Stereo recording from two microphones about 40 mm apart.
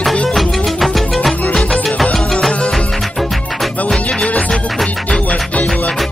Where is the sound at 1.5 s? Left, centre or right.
Centre.